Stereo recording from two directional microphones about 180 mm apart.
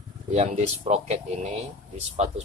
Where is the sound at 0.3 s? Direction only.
40° right (ahead or behind).